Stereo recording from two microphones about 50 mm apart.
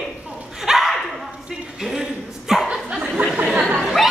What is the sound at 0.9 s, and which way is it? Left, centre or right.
Dog, centre.